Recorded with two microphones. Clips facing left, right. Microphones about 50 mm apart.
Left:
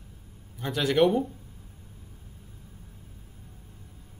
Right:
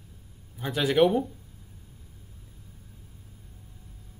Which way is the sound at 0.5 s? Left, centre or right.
Centre.